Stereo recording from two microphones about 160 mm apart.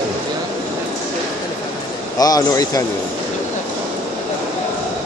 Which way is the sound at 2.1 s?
25° left (ahead or behind).